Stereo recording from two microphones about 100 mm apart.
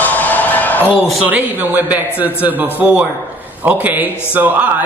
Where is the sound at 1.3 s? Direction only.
15° right (ahead or behind).